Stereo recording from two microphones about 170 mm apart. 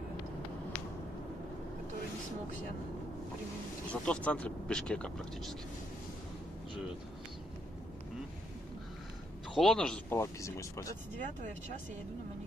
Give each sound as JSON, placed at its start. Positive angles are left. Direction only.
{"t": 3.9, "sound": "speech", "side_deg": 5}
{"t": 9.6, "sound": "speech", "side_deg": 5}
{"t": 10.1, "sound": "speech", "side_deg": 15}